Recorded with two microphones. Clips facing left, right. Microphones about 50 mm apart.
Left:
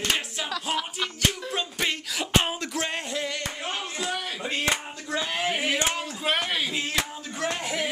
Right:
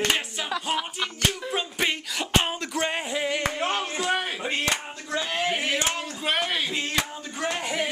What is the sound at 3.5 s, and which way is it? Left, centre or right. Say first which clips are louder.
Clapping: right 5 dB; right.